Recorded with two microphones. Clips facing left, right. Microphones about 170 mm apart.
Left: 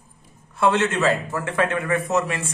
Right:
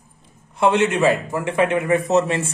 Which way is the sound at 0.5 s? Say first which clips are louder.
Right 3 dB; 15° right (ahead or behind).